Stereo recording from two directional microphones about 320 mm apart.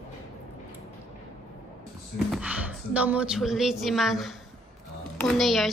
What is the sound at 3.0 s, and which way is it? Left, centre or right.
A woman's voice, centre.